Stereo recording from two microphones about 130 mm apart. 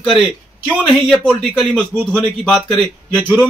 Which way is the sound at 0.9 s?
5° left (ahead or behind).